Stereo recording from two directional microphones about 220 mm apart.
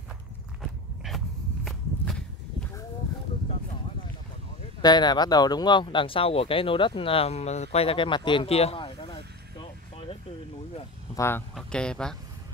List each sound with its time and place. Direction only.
0.6 s walk: centre (ahead or behind)
4.8 s speech: 20° left (ahead or behind)
11.1 s speech: 10° left (ahead or behind)